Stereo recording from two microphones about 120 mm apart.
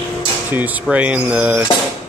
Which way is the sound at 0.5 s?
15° right (ahead or behind).